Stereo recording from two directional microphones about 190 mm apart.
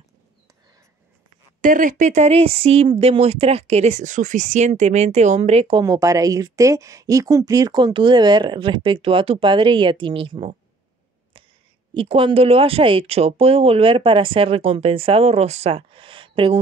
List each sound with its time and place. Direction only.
1.6 s speech: 45° right (ahead or behind)
5.9 s speech: 15° right (ahead or behind)
11.9 s speech: 30° right (ahead or behind)